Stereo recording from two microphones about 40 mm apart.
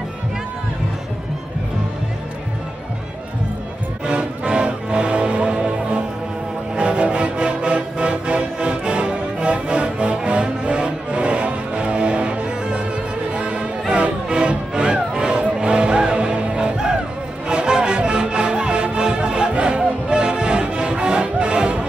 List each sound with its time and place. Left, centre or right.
4.0 s music: right